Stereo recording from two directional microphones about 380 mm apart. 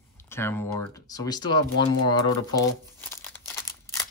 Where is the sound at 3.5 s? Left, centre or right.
Centre.